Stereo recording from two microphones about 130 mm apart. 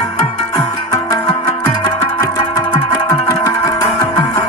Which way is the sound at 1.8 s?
30° left (ahead or behind).